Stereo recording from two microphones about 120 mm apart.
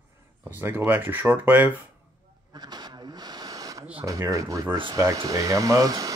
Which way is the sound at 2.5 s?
35° right (ahead or behind).